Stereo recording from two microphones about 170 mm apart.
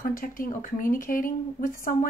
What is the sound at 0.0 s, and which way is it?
Speech, 55° left (ahead or behind).